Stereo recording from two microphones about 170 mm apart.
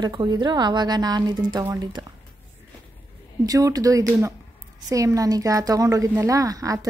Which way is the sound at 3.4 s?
20° right (ahead or behind).